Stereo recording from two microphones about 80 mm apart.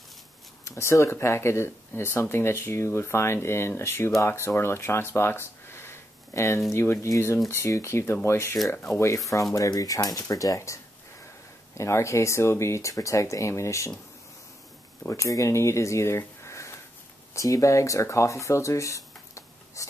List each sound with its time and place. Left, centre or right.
0.7 s speech: left
15.0 s speech: left